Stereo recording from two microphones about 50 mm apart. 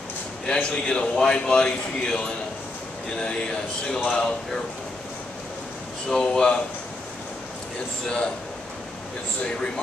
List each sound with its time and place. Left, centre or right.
0.5 s a man's voice: centre
4.0 s a man's voice: left
6.0 s a man's voice: centre